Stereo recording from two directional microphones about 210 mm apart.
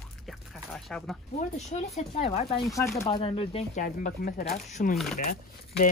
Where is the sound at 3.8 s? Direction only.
40° left (ahead or behind).